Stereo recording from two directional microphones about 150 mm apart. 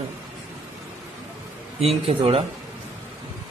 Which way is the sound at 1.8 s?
40° right (ahead or behind).